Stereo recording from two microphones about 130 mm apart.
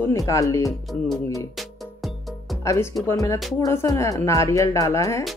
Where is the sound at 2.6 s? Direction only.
25° left (ahead or behind).